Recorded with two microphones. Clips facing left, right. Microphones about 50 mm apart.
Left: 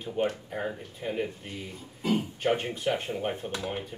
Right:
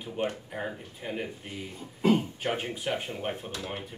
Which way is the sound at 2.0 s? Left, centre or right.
Right.